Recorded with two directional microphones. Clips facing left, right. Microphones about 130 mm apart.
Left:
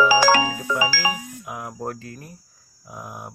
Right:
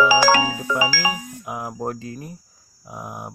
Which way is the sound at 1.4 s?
25° right (ahead or behind).